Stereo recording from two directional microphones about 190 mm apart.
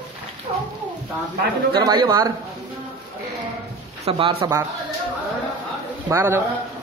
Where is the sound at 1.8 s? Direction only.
20° right (ahead or behind).